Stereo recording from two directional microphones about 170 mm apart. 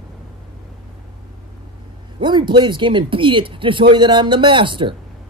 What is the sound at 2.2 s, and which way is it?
Speech, 25° right (ahead or behind).